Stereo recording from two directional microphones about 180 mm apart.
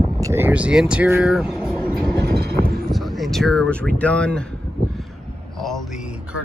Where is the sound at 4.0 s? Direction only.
5° left (ahead or behind).